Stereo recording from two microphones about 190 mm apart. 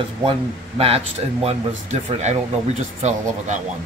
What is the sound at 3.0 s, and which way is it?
Speech, 40° right (ahead or behind).